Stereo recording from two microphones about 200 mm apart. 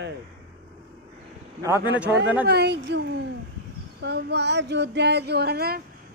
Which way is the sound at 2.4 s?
55° right (ahead or behind).